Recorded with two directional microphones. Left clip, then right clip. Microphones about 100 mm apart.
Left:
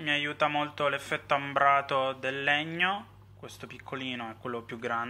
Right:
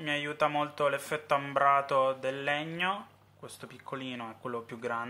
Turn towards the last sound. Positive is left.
turn(degrees=-30)  # may be behind; listen again after turning